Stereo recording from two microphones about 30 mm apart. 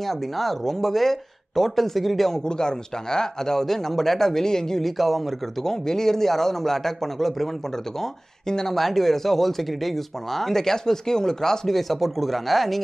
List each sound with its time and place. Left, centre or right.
0.0 s speech: centre
2.3 s speech: left
4.8 s speech: centre
5.6 s speech: centre
8.5 s speech: centre
8.7 s speech: centre
11.7 s speech: centre